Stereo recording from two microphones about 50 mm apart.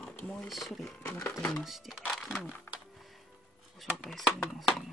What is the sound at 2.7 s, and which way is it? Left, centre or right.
Music, left.